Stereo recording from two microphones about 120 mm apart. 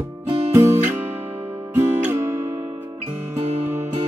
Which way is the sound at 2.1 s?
20° right (ahead or behind).